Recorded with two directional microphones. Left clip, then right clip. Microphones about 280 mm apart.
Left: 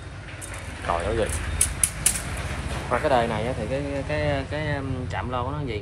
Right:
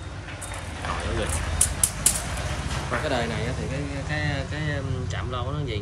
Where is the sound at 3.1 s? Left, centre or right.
Centre.